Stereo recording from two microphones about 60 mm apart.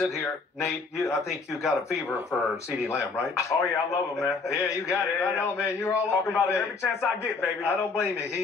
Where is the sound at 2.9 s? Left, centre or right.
Left.